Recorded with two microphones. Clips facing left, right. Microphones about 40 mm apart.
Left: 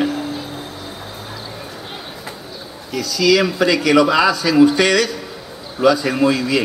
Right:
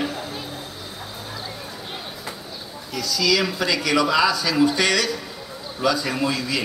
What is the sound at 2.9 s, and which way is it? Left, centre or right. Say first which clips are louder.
Speech: left 6 dB; centre.